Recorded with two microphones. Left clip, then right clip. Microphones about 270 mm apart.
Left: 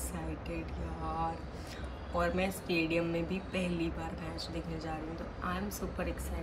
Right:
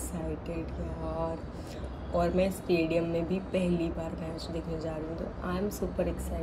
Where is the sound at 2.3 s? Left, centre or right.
Centre.